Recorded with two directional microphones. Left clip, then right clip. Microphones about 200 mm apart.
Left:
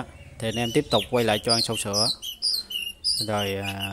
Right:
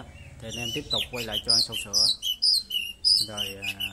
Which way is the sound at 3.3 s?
45° left (ahead or behind).